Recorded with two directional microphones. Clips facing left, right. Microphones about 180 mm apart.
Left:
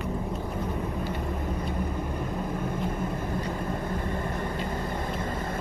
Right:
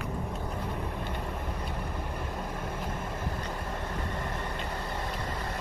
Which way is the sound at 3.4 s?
10° left (ahead or behind).